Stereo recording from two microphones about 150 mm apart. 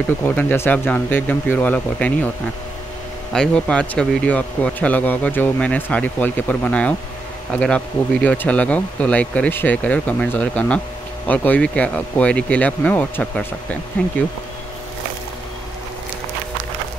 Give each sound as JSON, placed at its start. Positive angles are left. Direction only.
{"t": 0.4, "sound": "a man's voice", "side_deg": 10}
{"t": 3.3, "sound": "a man's voice", "side_deg": 5}